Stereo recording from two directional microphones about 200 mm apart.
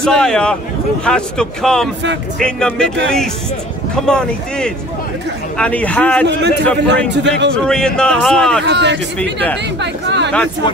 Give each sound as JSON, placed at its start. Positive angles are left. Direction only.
{"t": 0.0, "sound": "speech", "side_deg": 5}
{"t": 3.9, "sound": "a man's voice", "side_deg": 5}
{"t": 6.2, "sound": "a man's voice", "side_deg": -60}
{"t": 7.6, "sound": "speech", "side_deg": 5}
{"t": 8.6, "sound": "a man's voice", "side_deg": -60}
{"t": 9.8, "sound": "chatter", "side_deg": -60}